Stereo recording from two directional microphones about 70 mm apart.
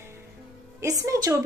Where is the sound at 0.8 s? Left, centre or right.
Right.